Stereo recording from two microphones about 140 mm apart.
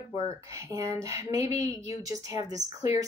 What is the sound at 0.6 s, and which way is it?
Speech, 20° right (ahead or behind).